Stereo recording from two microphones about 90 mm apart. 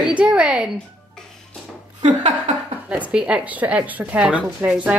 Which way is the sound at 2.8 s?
15° right (ahead or behind).